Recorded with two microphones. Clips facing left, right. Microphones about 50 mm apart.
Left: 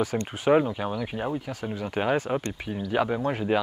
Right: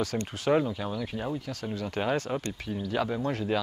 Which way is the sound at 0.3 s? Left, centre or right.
Centre.